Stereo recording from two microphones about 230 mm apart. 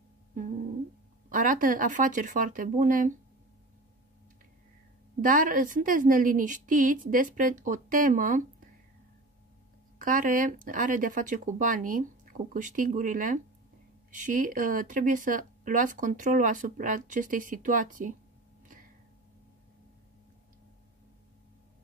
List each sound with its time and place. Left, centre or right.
0.3 s humming: right
1.3 s speech: right
5.2 s speech: right
9.9 s speech: right